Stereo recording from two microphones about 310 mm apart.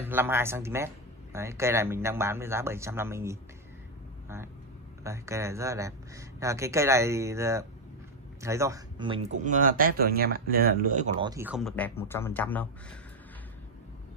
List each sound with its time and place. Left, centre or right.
0.0 s speech: centre
5.0 s speech: centre